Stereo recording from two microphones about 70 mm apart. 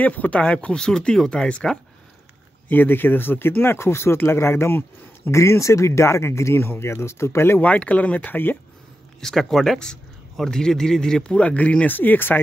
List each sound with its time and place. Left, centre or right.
0.0 s speech: left
2.7 s speech: left
7.6 s speech: centre
9.2 s speech: centre; by 12.4 s left